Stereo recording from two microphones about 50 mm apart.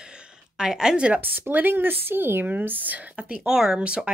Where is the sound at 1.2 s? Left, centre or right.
Right.